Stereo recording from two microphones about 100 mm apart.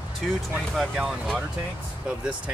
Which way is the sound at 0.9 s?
Centre (ahead or behind).